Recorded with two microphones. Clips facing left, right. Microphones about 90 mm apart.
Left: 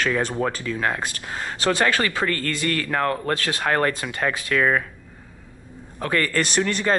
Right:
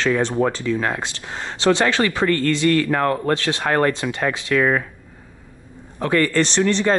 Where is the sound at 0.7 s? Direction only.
Centre (ahead or behind).